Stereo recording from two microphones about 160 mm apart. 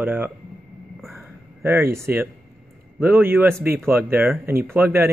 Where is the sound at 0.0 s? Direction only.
10° right (ahead or behind).